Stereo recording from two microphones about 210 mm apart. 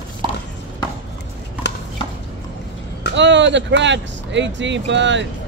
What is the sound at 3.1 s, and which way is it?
Speech, 60° right (ahead or behind).